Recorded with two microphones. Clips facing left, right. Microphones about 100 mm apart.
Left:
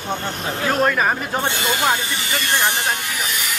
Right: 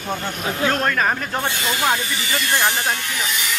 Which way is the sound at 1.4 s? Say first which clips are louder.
Left 2 dB; 20° left (ahead or behind).